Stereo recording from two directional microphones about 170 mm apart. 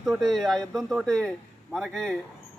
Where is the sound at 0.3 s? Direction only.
Centre (ahead or behind).